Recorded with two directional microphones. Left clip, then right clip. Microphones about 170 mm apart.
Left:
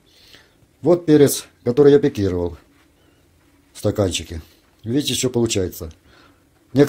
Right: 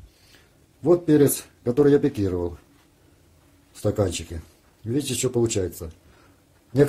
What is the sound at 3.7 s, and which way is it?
Speech, 15° left (ahead or behind).